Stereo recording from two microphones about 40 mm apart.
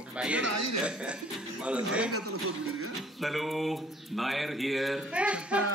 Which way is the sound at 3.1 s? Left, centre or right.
Centre.